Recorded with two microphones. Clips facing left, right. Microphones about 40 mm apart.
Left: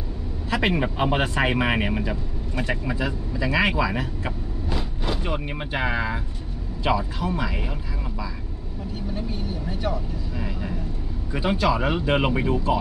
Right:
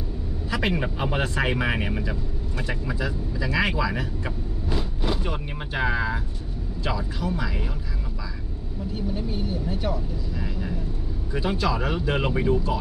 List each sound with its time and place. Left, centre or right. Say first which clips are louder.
0.5 s speech: left 3 dB; centre
9.7 s speech: left 3 dB; centre
10.3 s speech: left 1 dB; centre